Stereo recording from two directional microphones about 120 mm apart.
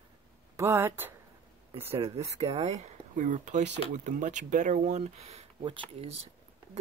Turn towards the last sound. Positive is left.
turn(degrees=-60)  # may be behind; listen again after turning